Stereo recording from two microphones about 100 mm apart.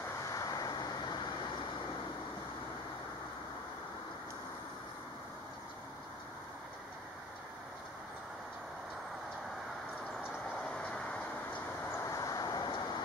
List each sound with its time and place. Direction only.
0.2 s vehicle: 35° left (ahead or behind)
10.3 s train: 5° left (ahead or behind)
11.8 s vehicle: 30° left (ahead or behind)